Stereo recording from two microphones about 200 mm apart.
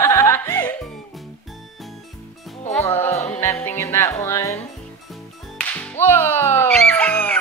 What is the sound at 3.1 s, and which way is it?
Music, 35° left (ahead or behind).